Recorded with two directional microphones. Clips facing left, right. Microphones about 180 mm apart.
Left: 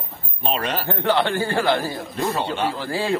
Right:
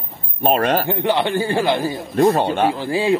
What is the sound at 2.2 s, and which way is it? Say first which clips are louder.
Speech: right 9 dB; 55° right (ahead or behind).